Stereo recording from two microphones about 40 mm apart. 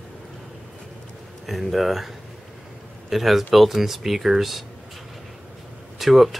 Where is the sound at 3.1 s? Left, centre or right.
Centre.